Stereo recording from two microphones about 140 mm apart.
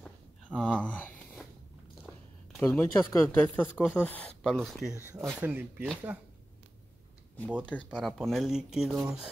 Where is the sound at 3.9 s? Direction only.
10° left (ahead or behind); by 6.2 s 10° right (ahead or behind).